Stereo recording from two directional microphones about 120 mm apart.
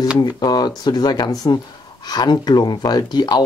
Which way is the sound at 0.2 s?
35° left (ahead or behind).